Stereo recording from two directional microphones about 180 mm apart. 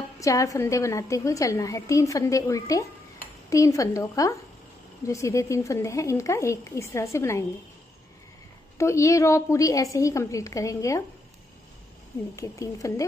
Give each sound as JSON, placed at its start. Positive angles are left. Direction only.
{"t": 0.2, "sound": "a woman's voice", "side_deg": 15}
{"t": 8.7, "sound": "a woman's voice", "side_deg": 15}
{"t": 12.4, "sound": "a woman's voice", "side_deg": 15}